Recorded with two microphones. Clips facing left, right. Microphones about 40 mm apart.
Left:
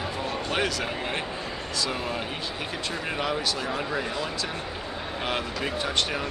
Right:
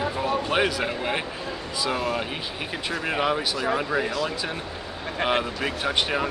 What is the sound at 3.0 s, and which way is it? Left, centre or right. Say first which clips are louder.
Speech: right 5 dB; centre.